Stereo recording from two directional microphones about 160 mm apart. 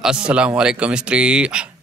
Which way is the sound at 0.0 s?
5° right (ahead or behind).